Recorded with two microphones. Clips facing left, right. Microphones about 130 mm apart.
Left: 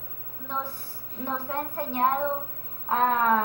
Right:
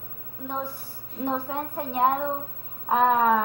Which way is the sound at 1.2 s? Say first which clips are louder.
Right 3 dB; 15° right (ahead or behind).